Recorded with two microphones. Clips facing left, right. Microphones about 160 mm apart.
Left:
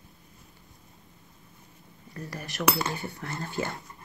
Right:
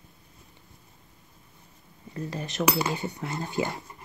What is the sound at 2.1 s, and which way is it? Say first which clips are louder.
Speech: right 5 dB; 20° right (ahead or behind).